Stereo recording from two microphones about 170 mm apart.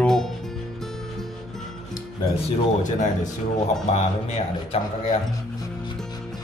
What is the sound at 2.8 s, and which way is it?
Speech, 45° left (ahead or behind).